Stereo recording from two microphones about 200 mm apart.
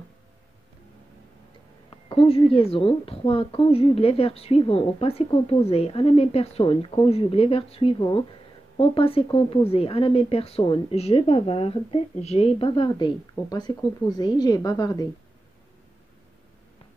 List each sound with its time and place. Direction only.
1.9 s a woman's voice: 25° left (ahead or behind)